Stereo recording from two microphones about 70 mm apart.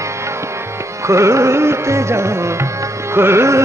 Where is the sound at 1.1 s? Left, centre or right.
Right.